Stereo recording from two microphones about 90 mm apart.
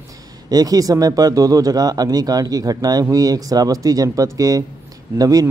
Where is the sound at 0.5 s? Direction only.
45° right (ahead or behind).